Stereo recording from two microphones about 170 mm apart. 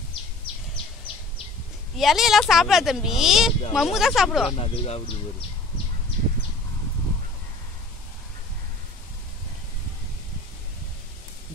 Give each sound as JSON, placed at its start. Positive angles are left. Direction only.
{"t": 2.0, "sound": "speech", "side_deg": 0}
{"t": 4.6, "sound": "speech", "side_deg": 35}